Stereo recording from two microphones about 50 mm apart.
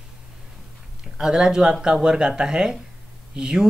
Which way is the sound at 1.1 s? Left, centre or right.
Centre.